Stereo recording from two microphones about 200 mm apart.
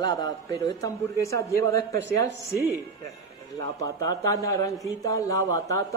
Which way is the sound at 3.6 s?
15° left (ahead or behind).